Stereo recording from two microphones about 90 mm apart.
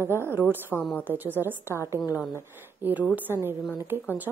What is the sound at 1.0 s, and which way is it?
A woman's voice, 20° right (ahead or behind).